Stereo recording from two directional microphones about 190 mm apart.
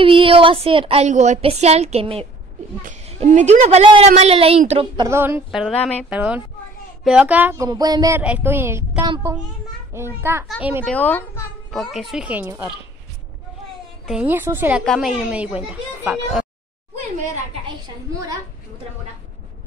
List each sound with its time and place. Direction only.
0.0 s speech: 30° right (ahead or behind)
4.9 s speech: 15° right (ahead or behind)
5.5 s a woman's voice: centre (ahead or behind)
6.0 s speech: 5° right (ahead or behind)
8.2 s speech: 5° right (ahead or behind)
10.9 s a woman's voice: 10° left (ahead or behind); by 12.7 s 10° right (ahead or behind)
14.0 s a woman's voice: 5° right (ahead or behind)
17.6 s a woman's voice: 20° right (ahead or behind)